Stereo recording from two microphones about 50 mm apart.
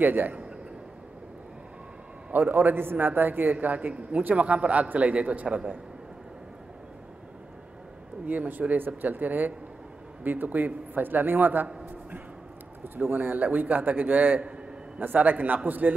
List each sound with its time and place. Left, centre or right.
0.0 s a man's voice: right
2.3 s a man's voice: right
8.3 s a man's voice: right
12.8 s a man's voice: right